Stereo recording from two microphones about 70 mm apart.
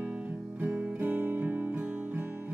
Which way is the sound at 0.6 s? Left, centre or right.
Right.